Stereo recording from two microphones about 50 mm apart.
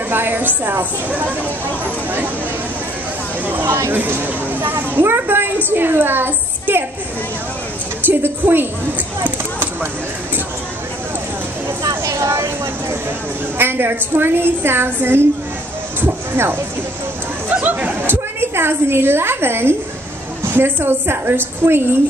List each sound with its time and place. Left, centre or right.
0.1 s speech: right
3.4 s speech: right
8.0 s a woman's voice: right
9.2 s a sound: right
11.9 s a sound: right
13.6 s speech: right
17.6 s chatter: right
18.0 s a woman's voice: right